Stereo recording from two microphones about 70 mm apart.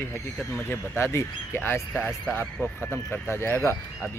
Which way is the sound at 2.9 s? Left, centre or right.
Left.